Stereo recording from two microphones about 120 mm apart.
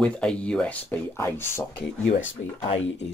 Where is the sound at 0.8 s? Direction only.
20° left (ahead or behind).